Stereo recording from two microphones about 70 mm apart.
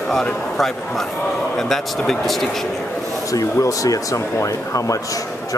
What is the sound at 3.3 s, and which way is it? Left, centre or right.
Speech, left.